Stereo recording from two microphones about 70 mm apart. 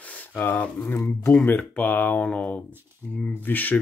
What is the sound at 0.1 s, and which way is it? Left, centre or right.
Speech, left.